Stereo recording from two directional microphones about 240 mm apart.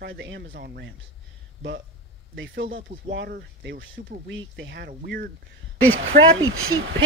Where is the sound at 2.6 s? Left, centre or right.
Right.